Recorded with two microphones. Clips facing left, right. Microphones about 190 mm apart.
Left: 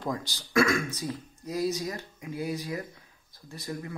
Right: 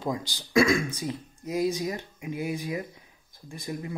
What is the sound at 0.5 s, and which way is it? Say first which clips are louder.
Speech: right 3 dB; 15° right (ahead or behind).